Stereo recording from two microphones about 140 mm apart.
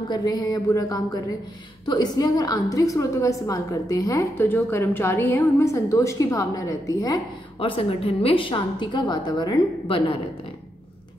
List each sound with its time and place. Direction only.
0.1 s a woman's voice: 30° left (ahead or behind)
7.5 s a woman's voice: 40° left (ahead or behind)